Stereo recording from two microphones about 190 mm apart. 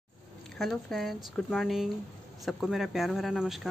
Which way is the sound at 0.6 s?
Centre (ahead or behind).